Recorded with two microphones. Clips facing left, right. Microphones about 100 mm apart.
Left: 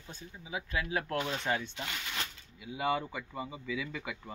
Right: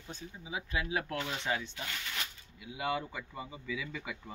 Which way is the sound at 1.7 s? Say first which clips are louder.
Left 2 dB; 20° left (ahead or behind).